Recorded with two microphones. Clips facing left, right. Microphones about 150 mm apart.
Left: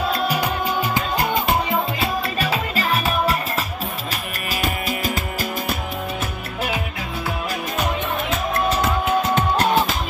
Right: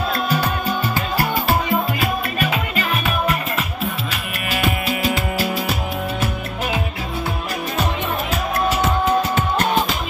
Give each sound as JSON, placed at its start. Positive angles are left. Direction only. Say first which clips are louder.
{"t": 0.3, "sound": "music", "louder": "right 1 dB", "side_deg": 10}
{"t": 2.3, "sound": "music", "louder": "right 1 dB", "side_deg": 35}